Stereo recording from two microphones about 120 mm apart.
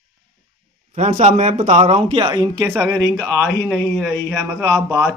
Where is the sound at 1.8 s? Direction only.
55° right (ahead or behind).